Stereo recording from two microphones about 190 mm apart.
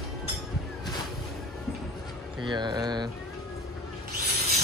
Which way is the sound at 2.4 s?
25° right (ahead or behind).